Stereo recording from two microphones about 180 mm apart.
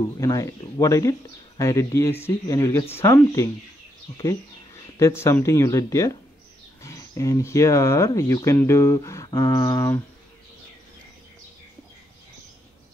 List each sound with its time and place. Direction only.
0.2 s speech: 20° left (ahead or behind)
4.9 s speech: 15° left (ahead or behind)